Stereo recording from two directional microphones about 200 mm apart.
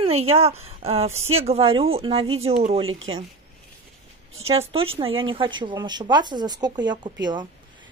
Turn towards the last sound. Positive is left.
turn(degrees=-20)  # may be behind; listen again after turning